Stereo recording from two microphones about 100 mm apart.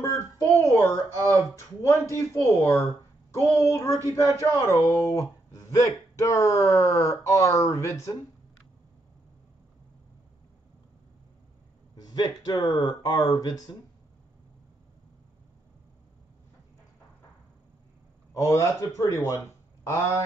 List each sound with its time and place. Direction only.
0.0 s child singing: 35° left (ahead or behind)
1.5 s speech: 30° left (ahead or behind)
11.9 s a sound: 45° left (ahead or behind)
12.7 s speech: 45° left (ahead or behind)
18.3 s speech: 30° left (ahead or behind)